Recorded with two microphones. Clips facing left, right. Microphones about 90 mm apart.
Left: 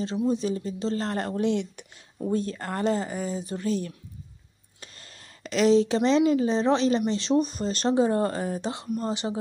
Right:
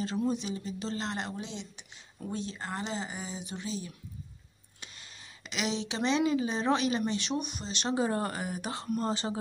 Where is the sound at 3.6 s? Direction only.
60° left (ahead or behind).